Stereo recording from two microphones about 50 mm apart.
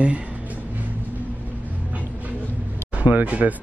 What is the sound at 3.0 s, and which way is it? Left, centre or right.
Speech, right.